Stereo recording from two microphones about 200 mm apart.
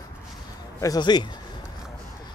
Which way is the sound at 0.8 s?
20° left (ahead or behind).